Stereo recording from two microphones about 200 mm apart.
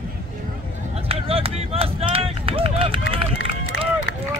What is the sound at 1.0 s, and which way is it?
Run, 30° right (ahead or behind).